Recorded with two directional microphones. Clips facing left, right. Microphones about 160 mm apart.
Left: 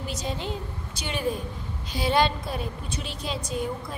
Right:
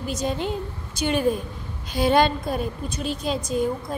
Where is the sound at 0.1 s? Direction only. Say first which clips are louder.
Right 7 dB; 50° right (ahead or behind).